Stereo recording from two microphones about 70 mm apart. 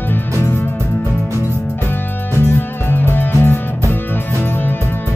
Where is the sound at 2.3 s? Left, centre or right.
Left.